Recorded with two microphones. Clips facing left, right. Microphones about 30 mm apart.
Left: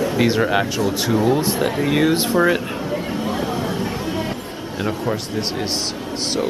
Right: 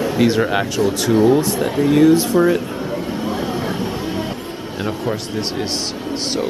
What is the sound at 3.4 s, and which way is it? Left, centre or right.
Vehicle, centre.